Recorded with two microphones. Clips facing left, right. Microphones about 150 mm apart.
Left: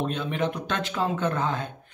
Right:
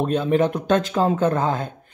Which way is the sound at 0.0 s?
40° right (ahead or behind).